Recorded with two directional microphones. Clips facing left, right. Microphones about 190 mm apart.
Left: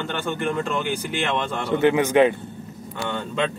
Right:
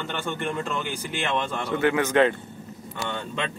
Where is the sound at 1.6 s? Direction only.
30° left (ahead or behind).